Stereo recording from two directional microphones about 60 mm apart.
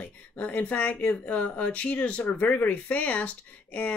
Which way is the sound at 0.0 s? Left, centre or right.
Left.